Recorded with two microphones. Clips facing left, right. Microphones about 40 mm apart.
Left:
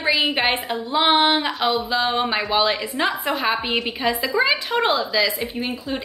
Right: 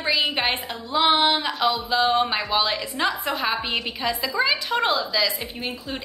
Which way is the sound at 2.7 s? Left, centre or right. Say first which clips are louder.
Left 3 dB; left.